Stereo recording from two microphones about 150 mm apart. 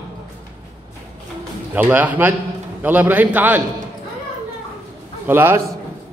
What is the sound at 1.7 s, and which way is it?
A man's voice, 10° right (ahead or behind).